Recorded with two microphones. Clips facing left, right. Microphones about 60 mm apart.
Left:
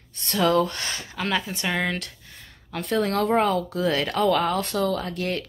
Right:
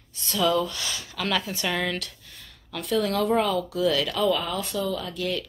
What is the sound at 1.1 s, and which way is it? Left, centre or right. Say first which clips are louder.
Speech: left 1 dB; left.